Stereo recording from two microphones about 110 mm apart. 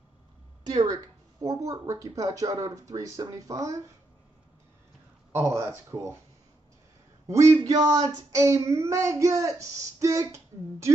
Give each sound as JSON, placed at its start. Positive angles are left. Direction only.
{"t": 0.7, "sound": "speech", "side_deg": -35}
{"t": 5.3, "sound": "child singing", "side_deg": -25}
{"t": 7.2, "sound": "child singing", "side_deg": -30}